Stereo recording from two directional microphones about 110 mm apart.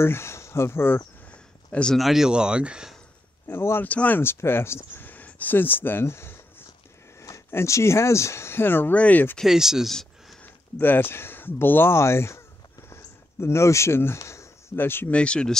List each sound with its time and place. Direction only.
0.0 s speech: 25° left (ahead or behind); by 3.0 s 5° right (ahead or behind)
3.4 s speech: 20° left (ahead or behind)
9.4 s speech: 5° right (ahead or behind)
10.4 s speech: 20° left (ahead or behind)
12.9 s a sound: 25° left (ahead or behind)
14.1 s speech: 25° left (ahead or behind); by 15.5 s 10° left (ahead or behind)